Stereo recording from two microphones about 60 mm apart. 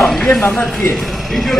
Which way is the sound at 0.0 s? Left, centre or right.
Centre.